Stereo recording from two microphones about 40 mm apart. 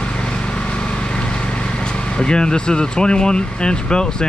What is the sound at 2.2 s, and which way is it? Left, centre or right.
Speech, centre.